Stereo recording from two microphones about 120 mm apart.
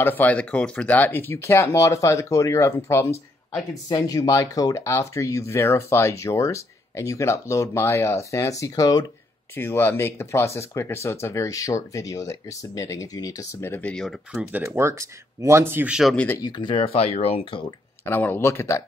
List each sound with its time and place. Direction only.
0.0 s speech: 15° left (ahead or behind); by 9.0 s 30° left (ahead or behind)
9.6 s speech: 20° left (ahead or behind); by 14.5 s centre (ahead or behind)
14.5 s speech: 15° right (ahead or behind)
15.9 s speech: centre (ahead or behind)
16.3 s speech: 40° left (ahead or behind)
18.0 s speech: 15° left (ahead or behind)